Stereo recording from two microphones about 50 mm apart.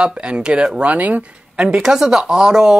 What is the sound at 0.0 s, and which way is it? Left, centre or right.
Speech, right.